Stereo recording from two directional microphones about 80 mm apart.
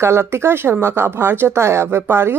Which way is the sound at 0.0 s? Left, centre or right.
Right.